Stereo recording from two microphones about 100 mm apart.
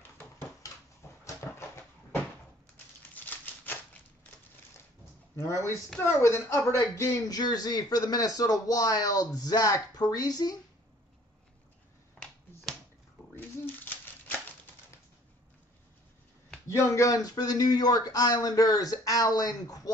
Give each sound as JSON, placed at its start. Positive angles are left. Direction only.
{"t": 1.2, "sound": "dog", "side_deg": 30}
{"t": 3.2, "sound": "a sound", "side_deg": 20}
{"t": 5.3, "sound": "speech", "side_deg": 25}
{"t": 16.6, "sound": "speech", "side_deg": 30}